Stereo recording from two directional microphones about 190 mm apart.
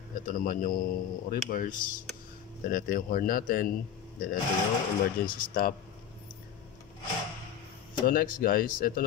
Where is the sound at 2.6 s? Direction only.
50° left (ahead or behind).